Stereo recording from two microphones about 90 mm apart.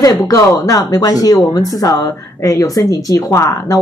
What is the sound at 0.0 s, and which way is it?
Speech, 40° left (ahead or behind).